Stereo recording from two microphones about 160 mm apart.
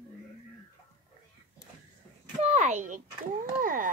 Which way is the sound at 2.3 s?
45° right (ahead or behind).